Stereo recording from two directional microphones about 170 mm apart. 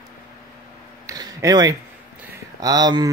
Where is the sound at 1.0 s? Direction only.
20° right (ahead or behind).